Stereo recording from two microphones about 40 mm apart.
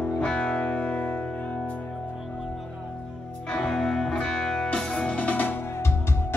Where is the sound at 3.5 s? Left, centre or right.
Centre.